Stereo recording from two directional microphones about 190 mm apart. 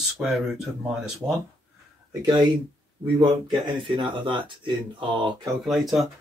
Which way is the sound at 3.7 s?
25° right (ahead or behind).